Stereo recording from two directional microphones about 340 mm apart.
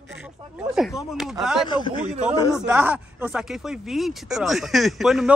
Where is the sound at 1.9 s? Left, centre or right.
Centre.